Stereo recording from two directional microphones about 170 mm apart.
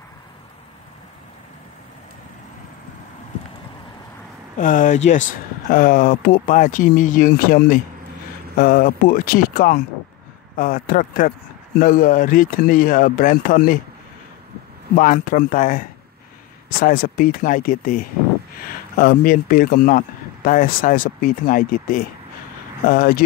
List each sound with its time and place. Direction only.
4.6 s speech: 50° left (ahead or behind)
15.0 s speech: 50° left (ahead or behind)